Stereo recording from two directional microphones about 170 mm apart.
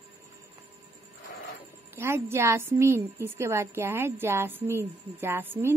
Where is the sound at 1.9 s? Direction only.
15° right (ahead or behind).